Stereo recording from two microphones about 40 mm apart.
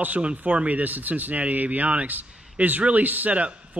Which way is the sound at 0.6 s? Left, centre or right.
Right.